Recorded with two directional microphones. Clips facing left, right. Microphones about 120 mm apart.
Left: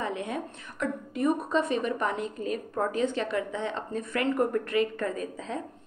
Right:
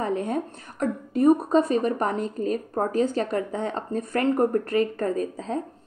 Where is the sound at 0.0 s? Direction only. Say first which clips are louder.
Right 6 dB; 40° right (ahead or behind).